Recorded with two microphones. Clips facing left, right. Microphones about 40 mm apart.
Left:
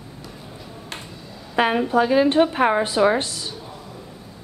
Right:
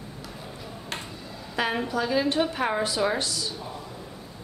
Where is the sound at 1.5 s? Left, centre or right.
Left.